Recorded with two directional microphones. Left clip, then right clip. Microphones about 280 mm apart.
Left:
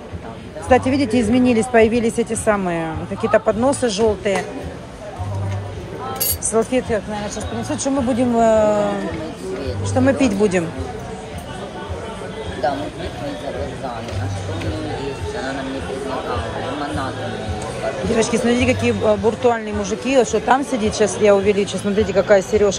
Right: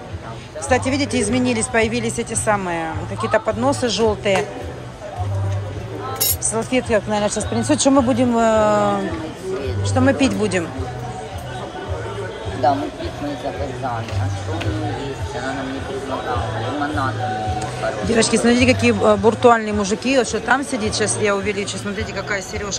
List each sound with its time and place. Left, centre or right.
0.7 s speech: centre
6.5 s speech: centre
7.6 s speech: right
8.2 s speech: centre
9.9 s speech: centre
18.1 s speech: centre